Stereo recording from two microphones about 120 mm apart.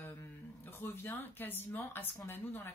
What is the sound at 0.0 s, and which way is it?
A woman's voice, 20° left (ahead or behind).